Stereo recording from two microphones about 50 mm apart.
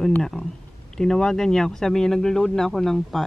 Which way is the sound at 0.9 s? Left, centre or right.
Centre.